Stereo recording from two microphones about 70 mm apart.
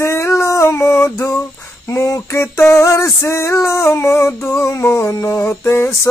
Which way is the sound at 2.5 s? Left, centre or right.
Left.